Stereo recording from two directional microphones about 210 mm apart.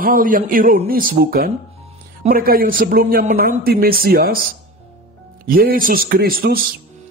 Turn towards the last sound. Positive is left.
turn(degrees=-45)  # may be behind; listen again after turning